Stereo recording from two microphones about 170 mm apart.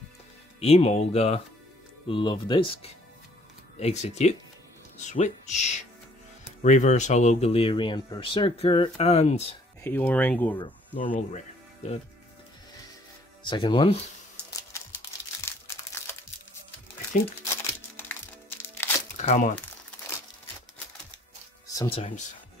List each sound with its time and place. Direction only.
0.6 s speech: 35° left (ahead or behind)
9.8 s speech: 10° left (ahead or behind)
11.1 s music: 40° left (ahead or behind)
13.5 s speech: 30° left (ahead or behind)
15.4 s crumpling: 15° left (ahead or behind)
18.8 s crumpling: 15° left (ahead or behind)
19.1 s speech: 45° left (ahead or behind)
21.8 s speech: 35° left (ahead or behind)